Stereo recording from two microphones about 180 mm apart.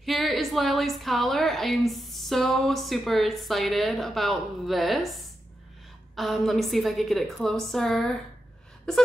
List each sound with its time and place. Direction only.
0.0 s a woman's voice: centre (ahead or behind)